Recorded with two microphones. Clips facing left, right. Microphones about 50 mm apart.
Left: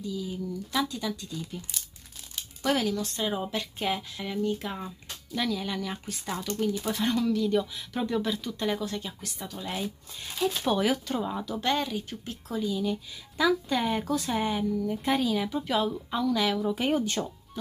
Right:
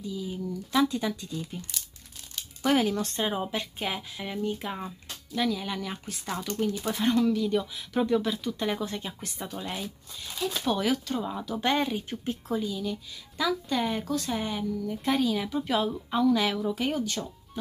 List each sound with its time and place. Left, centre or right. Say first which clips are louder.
0.0 s speech: even; centre
2.6 s speech: right 3 dB; centre
2.9 s speech: right 1 dB; right
3.3 s speech: even; centre
6.4 s speech: even; centre
8.8 s speech: even; right
10.6 s speech: right 1 dB; centre
11.5 s speech: right 3 dB; centre
12.6 s speech: left 3 dB; centre
16.6 s speech: left 2 dB; centre
17.0 s speech: left 2 dB; left